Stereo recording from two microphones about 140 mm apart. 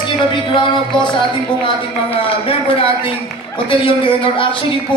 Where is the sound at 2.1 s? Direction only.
40° left (ahead or behind).